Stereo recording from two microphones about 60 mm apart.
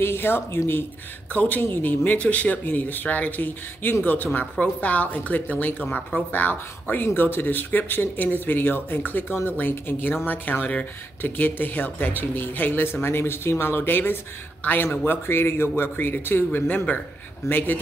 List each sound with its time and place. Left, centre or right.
0.0 s speech: left
1.3 s a woman's voice: left
14.9 s a woman's voice: left